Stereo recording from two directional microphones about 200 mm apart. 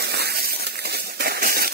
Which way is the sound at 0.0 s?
55° right (ahead or behind).